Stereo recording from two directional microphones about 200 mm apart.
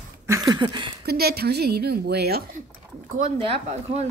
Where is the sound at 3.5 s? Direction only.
30° right (ahead or behind).